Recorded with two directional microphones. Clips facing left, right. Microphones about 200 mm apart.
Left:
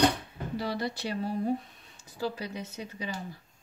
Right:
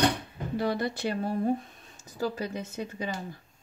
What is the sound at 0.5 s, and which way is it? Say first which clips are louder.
Speech: right 4 dB; 50° right (ahead or behind).